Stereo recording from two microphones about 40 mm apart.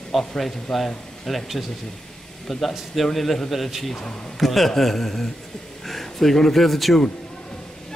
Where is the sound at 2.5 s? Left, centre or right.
Centre.